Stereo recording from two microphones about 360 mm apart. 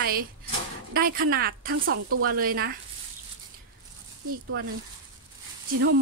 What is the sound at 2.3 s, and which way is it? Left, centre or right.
Speech, right.